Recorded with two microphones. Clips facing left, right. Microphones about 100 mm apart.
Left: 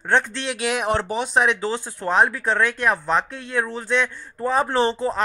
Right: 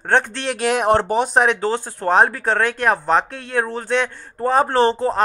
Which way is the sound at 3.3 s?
60° right (ahead or behind).